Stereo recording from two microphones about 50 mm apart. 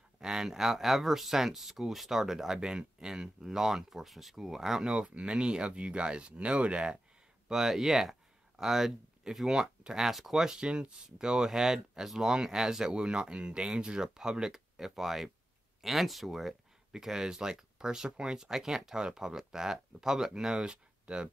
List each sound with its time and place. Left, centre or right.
0.2 s speech: centre
4.8 s speech: centre
7.4 s speech: centre